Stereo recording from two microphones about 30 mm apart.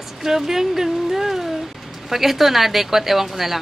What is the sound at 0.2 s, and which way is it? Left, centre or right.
Speech, centre.